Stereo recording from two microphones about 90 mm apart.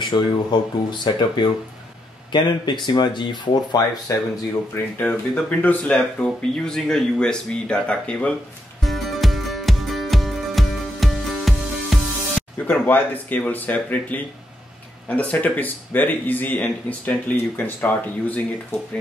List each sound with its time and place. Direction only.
0.0 s speech: 55° left (ahead or behind)
4.9 s speech: 15° left (ahead or behind)
8.8 s music: centre (ahead or behind)
12.6 s speech: 20° left (ahead or behind)